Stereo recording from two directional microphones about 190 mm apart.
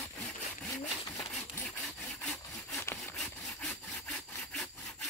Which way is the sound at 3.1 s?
Centre (ahead or behind).